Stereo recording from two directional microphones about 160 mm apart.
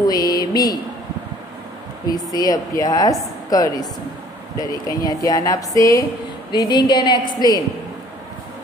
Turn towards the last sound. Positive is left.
turn(degrees=25)  # may be behind; listen again after turning